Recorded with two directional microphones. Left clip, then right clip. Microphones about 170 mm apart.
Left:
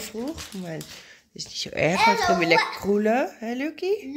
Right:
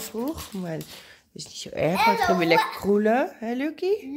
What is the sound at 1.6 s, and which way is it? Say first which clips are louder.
Speech: left 2 dB; centre (ahead or behind).